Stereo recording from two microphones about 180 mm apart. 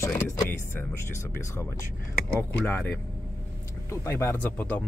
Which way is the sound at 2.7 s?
10° left (ahead or behind).